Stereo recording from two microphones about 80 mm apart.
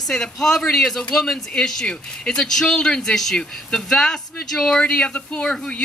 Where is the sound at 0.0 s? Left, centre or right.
Centre.